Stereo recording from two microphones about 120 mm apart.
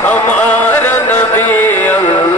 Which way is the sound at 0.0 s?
15° left (ahead or behind).